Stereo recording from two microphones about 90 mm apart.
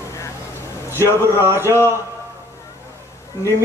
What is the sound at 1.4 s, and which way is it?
Speech, 30° right (ahead or behind).